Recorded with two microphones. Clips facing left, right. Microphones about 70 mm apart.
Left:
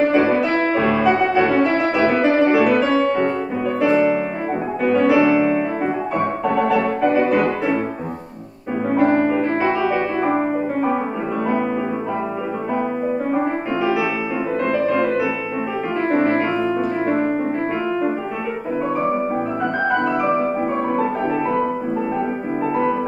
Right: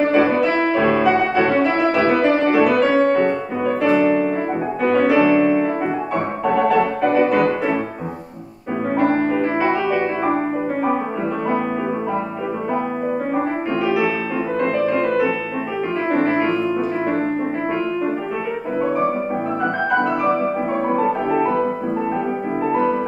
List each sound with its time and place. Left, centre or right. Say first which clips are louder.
0.1 s music: even; centre
8.9 s music: left 2 dB; centre
14.6 s music: even; centre
21.0 s music: right 2 dB; centre